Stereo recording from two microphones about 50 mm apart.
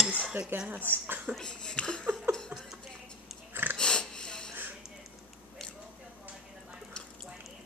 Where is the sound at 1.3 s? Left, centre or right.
Centre.